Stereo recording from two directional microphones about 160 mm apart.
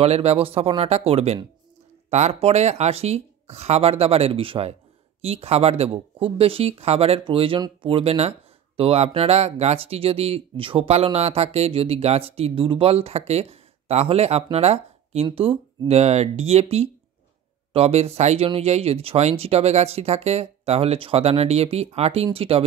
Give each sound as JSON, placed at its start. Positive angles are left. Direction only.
{"t": 0.0, "sound": "speech", "side_deg": -40}